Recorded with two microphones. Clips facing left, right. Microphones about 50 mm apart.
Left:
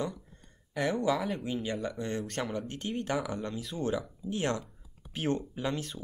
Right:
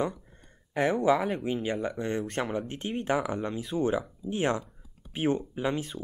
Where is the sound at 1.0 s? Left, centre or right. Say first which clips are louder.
Right 5 dB; right.